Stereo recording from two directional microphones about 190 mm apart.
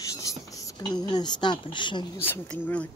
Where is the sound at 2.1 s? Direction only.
10° left (ahead or behind).